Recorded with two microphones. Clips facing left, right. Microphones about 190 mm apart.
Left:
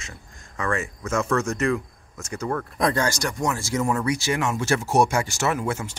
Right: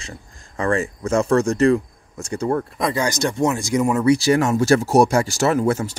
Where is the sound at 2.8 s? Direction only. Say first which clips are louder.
Left 2 dB; 5° right (ahead or behind).